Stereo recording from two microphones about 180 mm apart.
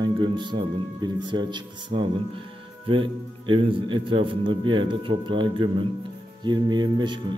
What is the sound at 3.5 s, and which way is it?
A man's voice, 30° right (ahead or behind).